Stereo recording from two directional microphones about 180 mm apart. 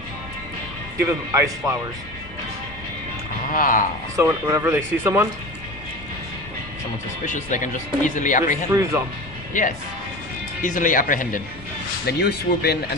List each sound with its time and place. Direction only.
1.0 s speech: 15° right (ahead or behind)
3.5 s speech: 50° left (ahead or behind)
4.2 s speech: 15° right (ahead or behind)
7.3 s speech: 45° left (ahead or behind)
8.6 s speech: 15° right (ahead or behind)
9.5 s speech: 45° left (ahead or behind)
12.1 s speech: 65° left (ahead or behind)